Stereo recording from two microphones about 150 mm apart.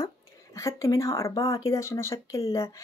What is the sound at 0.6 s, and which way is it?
Speech, 20° left (ahead or behind).